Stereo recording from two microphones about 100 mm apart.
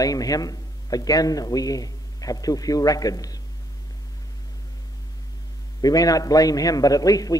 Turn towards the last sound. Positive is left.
turn(degrees=35)  # may be behind; listen again after turning